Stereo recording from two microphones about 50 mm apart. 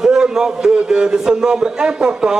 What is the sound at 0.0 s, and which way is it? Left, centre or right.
A man's voice, centre.